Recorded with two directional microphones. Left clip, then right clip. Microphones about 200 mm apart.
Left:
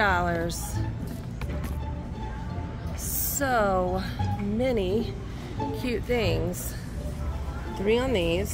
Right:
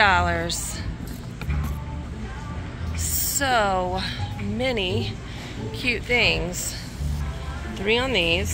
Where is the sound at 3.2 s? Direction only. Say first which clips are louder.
Right 3 dB; 25° left (ahead or behind).